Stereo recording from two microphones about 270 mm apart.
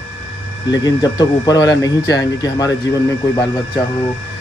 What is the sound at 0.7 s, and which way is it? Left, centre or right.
Speech, centre.